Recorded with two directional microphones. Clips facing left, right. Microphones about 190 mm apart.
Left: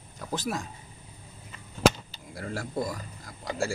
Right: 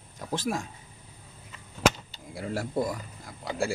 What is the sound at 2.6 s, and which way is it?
Speech, 10° right (ahead or behind).